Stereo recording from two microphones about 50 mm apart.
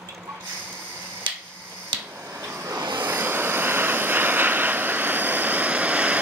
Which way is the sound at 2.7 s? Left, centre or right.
Right.